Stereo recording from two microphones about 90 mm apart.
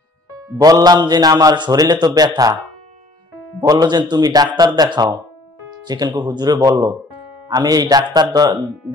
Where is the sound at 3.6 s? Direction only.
50° right (ahead or behind).